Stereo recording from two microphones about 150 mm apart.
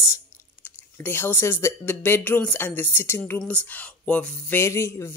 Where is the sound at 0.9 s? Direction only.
15° left (ahead or behind).